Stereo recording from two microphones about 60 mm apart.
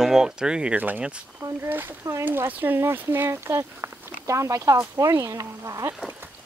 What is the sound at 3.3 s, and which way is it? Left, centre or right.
Speech, right.